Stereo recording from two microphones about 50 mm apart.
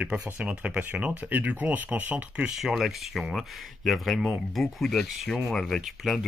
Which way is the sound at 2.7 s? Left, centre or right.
Centre.